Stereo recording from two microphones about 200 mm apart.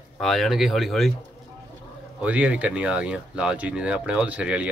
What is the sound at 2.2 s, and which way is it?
Speech, 5° right (ahead or behind).